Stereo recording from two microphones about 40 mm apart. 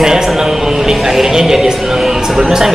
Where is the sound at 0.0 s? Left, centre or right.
Centre.